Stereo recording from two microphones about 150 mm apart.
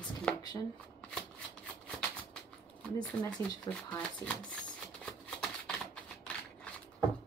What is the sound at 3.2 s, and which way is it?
Speech, 10° left (ahead or behind).